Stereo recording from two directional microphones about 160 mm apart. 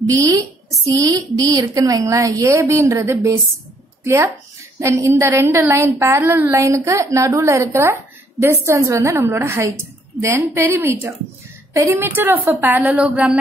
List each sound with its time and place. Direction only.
0.0 s a woman's voice: 20° right (ahead or behind)